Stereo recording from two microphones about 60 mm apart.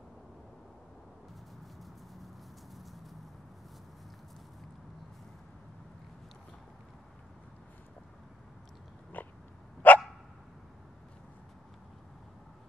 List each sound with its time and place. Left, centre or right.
2.7 s clip-clop: centre
9.1 s biting: left
9.8 s dog: left